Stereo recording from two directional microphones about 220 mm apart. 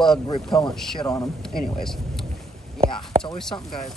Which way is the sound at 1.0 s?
15° left (ahead or behind).